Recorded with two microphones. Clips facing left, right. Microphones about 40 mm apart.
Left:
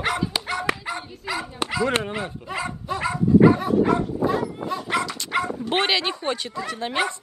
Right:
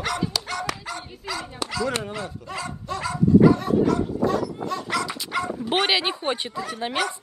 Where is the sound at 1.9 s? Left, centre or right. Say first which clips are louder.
Left 3 dB; left; by 4.9 s centre.